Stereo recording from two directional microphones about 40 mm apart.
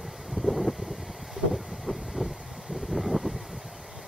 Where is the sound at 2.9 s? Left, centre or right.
Centre.